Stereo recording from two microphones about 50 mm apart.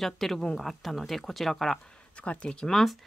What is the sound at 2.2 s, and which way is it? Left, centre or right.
Speech, left.